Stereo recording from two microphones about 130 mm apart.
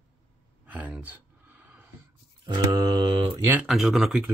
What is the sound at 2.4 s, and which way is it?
Mantra, 35° right (ahead or behind).